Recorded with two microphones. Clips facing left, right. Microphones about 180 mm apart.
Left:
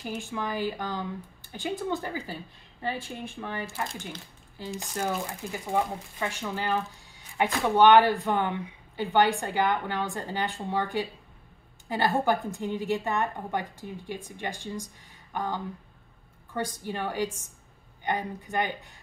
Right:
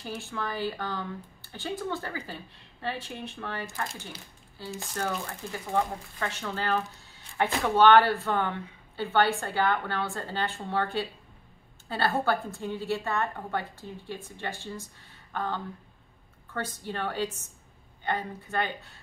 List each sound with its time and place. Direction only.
0.0 s speech: 15° left (ahead or behind)